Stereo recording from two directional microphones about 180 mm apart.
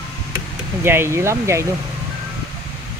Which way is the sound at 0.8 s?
15° right (ahead or behind).